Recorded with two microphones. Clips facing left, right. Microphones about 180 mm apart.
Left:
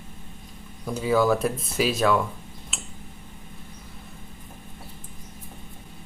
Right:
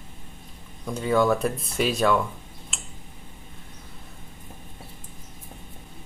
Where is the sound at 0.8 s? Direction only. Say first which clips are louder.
Even; 5° left (ahead or behind).